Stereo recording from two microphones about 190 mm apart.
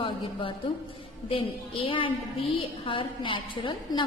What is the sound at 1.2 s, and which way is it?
A woman's voice, 30° left (ahead or behind).